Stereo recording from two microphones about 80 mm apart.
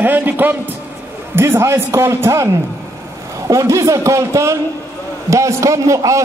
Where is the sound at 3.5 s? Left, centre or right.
Right.